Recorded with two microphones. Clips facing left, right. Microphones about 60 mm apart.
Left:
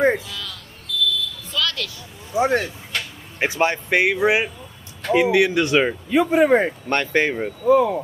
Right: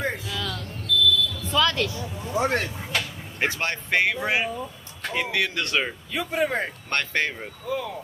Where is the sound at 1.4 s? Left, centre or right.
Right.